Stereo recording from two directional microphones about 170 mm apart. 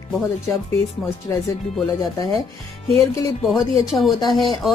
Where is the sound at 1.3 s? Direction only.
15° left (ahead or behind).